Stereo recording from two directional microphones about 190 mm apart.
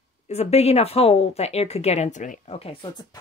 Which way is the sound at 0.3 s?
35° left (ahead or behind).